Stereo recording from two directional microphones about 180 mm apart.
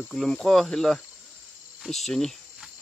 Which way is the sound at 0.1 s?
Centre (ahead or behind).